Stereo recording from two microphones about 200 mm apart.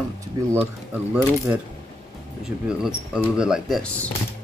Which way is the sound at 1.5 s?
15° right (ahead or behind).